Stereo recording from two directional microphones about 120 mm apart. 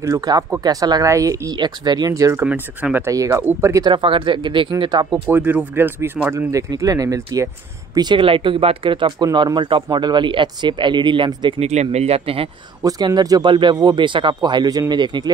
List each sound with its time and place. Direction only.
0.0 s speech: 30° right (ahead or behind)
2.4 s speech: 15° right (ahead or behind)
3.8 s speech: 45° right (ahead or behind)
5.3 s speech: 15° right (ahead or behind); by 11.6 s 40° right (ahead or behind)
11.6 s speech: 65° right (ahead or behind)
12.8 s speech: 35° right (ahead or behind)